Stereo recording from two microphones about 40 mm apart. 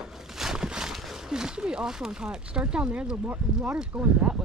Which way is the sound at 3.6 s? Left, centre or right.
Right.